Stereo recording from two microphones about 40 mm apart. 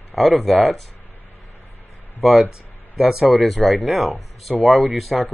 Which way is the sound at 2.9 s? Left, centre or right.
Centre.